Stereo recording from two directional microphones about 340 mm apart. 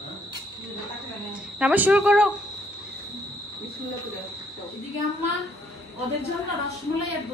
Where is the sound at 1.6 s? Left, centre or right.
Centre.